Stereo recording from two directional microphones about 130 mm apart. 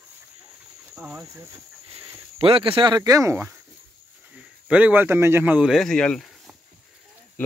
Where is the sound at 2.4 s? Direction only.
45° right (ahead or behind); by 3.5 s 20° right (ahead or behind).